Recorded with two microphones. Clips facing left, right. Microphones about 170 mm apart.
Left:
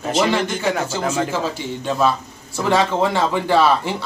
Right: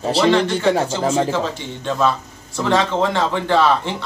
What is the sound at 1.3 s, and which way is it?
Speech, 10° left (ahead or behind).